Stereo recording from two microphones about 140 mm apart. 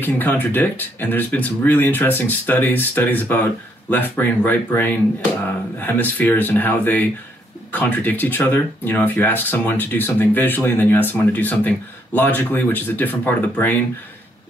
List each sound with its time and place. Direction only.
0.0 s speech: 15° left (ahead or behind)